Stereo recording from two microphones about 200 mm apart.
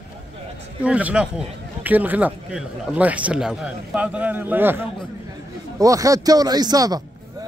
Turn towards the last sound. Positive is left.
turn(degrees=-20)  # may be behind; listen again after turning